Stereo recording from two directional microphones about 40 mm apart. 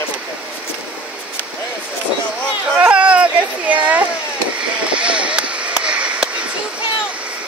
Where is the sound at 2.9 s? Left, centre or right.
Right.